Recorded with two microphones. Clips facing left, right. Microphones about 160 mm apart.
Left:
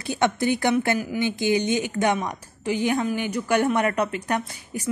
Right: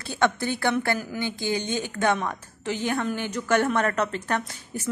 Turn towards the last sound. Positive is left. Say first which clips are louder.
# left 2 dB
turn(degrees=10)  # may be behind; listen again after turning